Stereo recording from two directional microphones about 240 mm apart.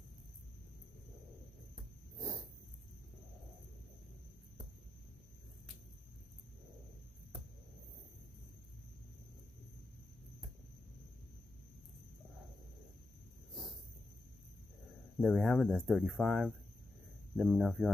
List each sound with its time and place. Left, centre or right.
2.1 s dog: centre
15.1 s speech: centre